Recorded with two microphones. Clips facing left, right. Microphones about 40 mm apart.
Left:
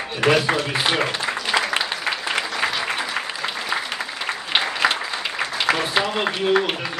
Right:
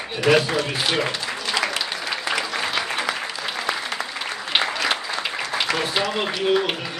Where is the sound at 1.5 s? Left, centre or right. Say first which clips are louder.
Left 2 dB; centre.